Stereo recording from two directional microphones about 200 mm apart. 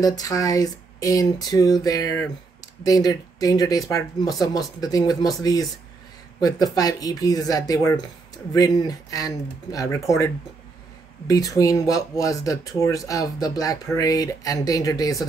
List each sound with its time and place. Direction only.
0.0 s speech: 20° left (ahead or behind)
11.2 s speech: 15° left (ahead or behind)